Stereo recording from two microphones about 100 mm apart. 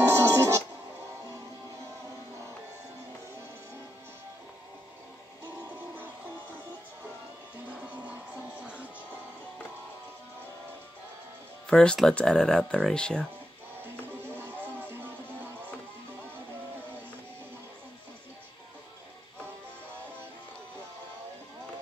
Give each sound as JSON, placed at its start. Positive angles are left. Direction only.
{"t": 0.1, "sound": "music", "side_deg": -30}
{"t": 7.7, "sound": "music", "side_deg": -15}
{"t": 11.6, "sound": "speech", "side_deg": 10}
{"t": 14.2, "sound": "music", "side_deg": -20}